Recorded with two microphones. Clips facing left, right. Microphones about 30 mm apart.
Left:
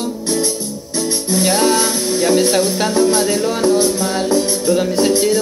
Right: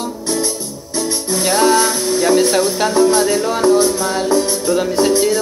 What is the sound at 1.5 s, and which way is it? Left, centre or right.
Music, left.